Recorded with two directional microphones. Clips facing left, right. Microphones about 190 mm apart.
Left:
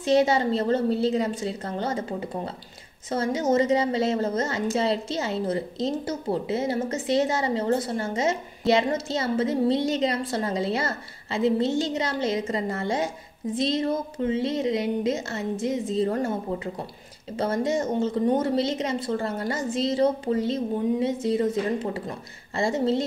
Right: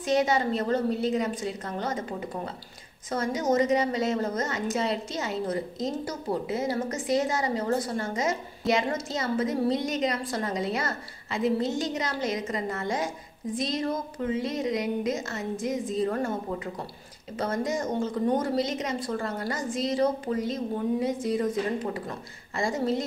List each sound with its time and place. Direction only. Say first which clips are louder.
0.0 s a woman's voice: left 4 dB; 30° left (ahead or behind)
22.6 s a woman's voice: left 4 dB; 25° left (ahead or behind)